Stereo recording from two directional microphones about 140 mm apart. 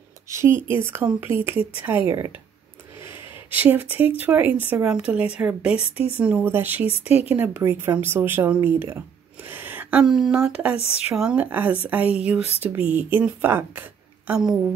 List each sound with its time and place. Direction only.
0.3 s speech: 20° right (ahead or behind)
3.4 s speech: 15° right (ahead or behind)